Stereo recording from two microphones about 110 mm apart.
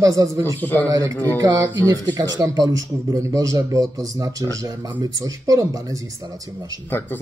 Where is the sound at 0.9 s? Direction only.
35° right (ahead or behind).